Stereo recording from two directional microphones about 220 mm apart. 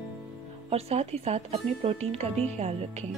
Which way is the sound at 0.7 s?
30° right (ahead or behind).